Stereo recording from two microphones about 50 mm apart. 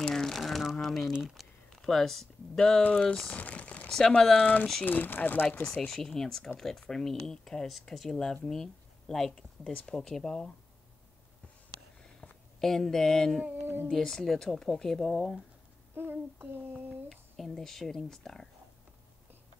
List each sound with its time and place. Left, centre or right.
0.0 s a sound: centre
1.8 s speech: centre
3.3 s a sound: left
4.2 s speech: centre
4.8 s speech: left
5.6 s speech: centre
12.5 s speech: centre
15.9 s a child's voice: right
17.1 s speech: centre